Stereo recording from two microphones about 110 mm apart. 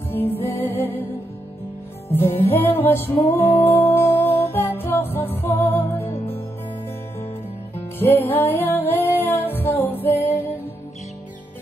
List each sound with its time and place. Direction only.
0.1 s music: 20° left (ahead or behind)
2.5 s music: 20° left (ahead or behind)
7.7 s music: 20° left (ahead or behind)